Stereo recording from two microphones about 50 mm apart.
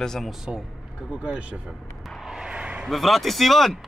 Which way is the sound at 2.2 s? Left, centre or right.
Centre.